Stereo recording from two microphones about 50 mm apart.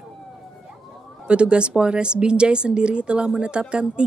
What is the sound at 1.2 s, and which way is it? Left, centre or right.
Speech, right.